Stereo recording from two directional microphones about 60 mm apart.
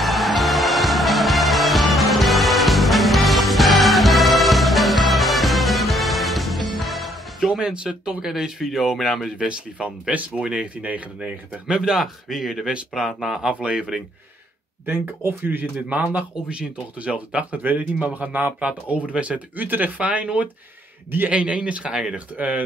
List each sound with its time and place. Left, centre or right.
0.0 s music: centre
10.1 s speech: centre
11.6 s speech: centre
14.9 s speech: right
15.9 s speech: right